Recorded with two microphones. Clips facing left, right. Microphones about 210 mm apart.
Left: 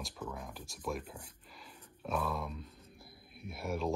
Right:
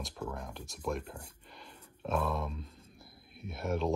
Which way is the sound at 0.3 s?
5° left (ahead or behind).